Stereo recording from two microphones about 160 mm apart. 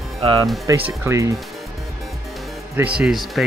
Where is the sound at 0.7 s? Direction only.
20° right (ahead or behind).